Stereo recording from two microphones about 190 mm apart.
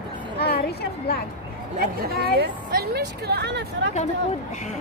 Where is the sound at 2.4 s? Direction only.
55° right (ahead or behind).